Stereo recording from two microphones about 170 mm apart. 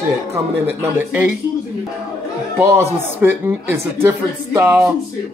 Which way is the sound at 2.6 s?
15° right (ahead or behind).